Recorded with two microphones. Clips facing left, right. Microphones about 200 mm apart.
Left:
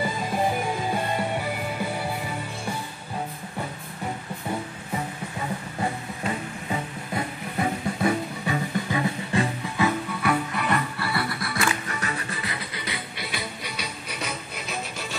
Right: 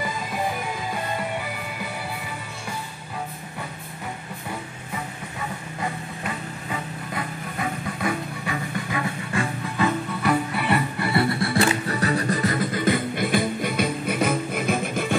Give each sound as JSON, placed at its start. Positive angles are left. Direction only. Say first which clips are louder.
{"t": 5.8, "sound": "music", "louder": "left 1 dB", "side_deg": 25}
{"t": 9.8, "sound": "music", "louder": "right 1 dB", "side_deg": 5}
{"t": 10.3, "sound": "music", "louder": "right 3 dB", "side_deg": -5}
{"t": 11.0, "sound": "music", "louder": "right 6 dB", "side_deg": -25}